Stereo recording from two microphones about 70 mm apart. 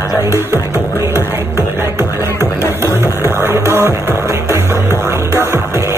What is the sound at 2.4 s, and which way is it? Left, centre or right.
Music, right.